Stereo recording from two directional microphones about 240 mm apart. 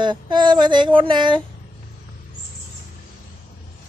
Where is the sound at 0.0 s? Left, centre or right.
Centre.